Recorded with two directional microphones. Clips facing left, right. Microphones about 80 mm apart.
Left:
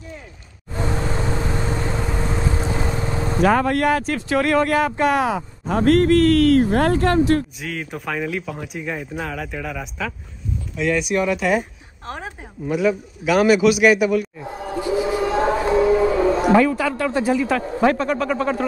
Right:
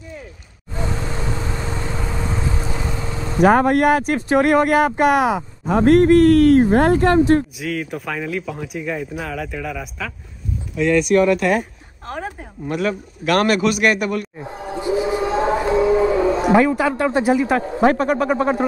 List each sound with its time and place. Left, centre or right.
0.7 s vehicle: left
3.3 s speech: right
7.6 s a man's voice: centre
14.7 s music: right
17.7 s speech: centre